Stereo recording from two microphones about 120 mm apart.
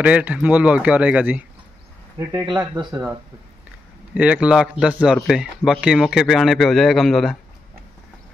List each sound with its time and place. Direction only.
0.0 s speech: 10° right (ahead or behind)
2.6 s speech: 35° right (ahead or behind)
2.9 s speech: 15° right (ahead or behind); by 7.3 s centre (ahead or behind)